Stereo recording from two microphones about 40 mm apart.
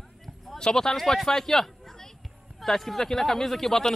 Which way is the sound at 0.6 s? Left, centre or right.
Centre.